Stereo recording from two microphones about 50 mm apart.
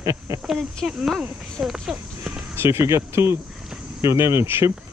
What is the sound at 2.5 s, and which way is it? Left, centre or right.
Speech, right.